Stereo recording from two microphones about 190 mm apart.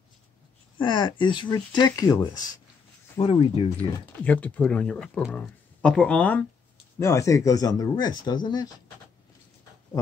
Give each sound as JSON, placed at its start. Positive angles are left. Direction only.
{"t": 0.7, "sound": "speech", "side_deg": 25}
{"t": 3.2, "sound": "speech", "side_deg": 30}
{"t": 4.2, "sound": "speech", "side_deg": 5}